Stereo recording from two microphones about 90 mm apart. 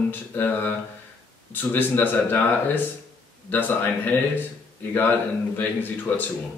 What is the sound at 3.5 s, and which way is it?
Speech, 20° left (ahead or behind).